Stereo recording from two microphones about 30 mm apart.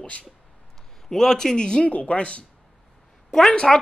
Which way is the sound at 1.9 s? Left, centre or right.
Left.